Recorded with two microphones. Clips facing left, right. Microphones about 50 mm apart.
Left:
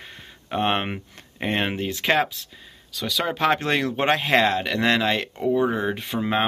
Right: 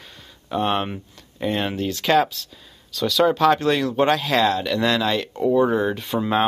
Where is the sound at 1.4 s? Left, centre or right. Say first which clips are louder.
Right 1 dB; left.